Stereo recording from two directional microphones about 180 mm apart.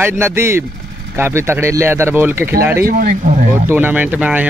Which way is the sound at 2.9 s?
50° right (ahead or behind).